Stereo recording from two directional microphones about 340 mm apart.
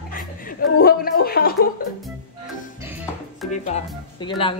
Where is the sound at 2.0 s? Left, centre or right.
Centre.